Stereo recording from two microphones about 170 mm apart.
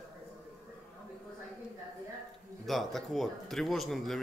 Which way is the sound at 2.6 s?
Centre (ahead or behind).